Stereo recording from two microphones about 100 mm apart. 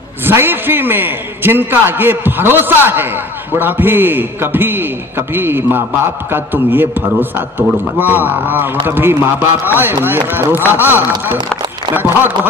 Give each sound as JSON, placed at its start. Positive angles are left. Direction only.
{"t": 0.2, "sound": "a man's voice", "side_deg": -20}